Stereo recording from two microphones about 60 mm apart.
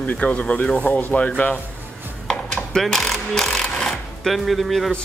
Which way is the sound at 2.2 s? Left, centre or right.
Centre.